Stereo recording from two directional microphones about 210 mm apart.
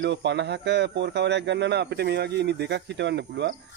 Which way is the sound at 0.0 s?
55° right (ahead or behind).